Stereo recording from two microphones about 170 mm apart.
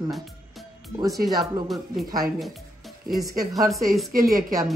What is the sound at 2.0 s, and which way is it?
Speech, 20° right (ahead or behind).